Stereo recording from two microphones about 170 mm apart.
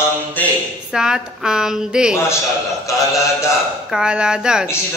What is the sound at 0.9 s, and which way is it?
Speech, 5° right (ahead or behind).